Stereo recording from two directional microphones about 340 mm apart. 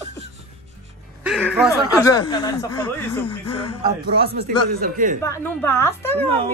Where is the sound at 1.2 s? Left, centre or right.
Centre.